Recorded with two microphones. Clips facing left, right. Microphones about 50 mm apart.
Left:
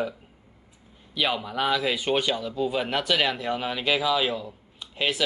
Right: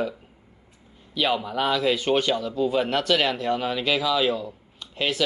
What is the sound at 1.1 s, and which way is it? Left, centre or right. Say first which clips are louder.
Speech: right 2 dB; centre.